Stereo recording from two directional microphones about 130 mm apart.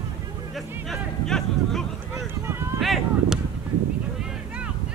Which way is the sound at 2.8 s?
Centre (ahead or behind).